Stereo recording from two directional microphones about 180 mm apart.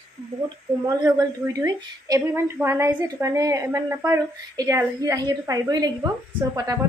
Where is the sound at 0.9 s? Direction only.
20° right (ahead or behind).